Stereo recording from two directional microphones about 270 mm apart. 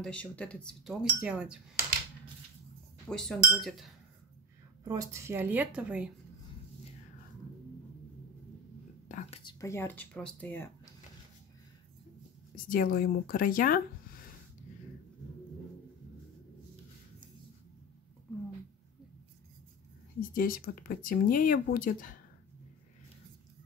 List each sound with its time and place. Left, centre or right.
0.0 s speech: centre
3.1 s speech: centre
4.8 s speech: centre
9.1 s speech: centre
12.6 s speech: left
20.2 s speech: left